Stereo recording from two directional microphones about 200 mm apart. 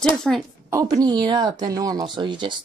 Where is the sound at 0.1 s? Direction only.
5° left (ahead or behind).